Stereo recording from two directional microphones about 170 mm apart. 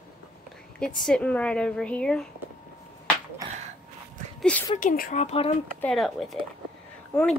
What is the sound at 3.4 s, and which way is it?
Gasp, 20° right (ahead or behind).